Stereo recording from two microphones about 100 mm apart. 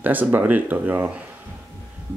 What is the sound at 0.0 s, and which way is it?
Speech, 15° right (ahead or behind).